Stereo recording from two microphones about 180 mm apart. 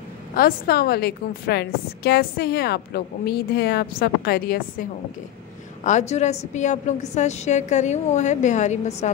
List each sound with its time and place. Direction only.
0.3 s a woman's voice: 55° left (ahead or behind)
5.9 s a woman's voice: 40° left (ahead or behind)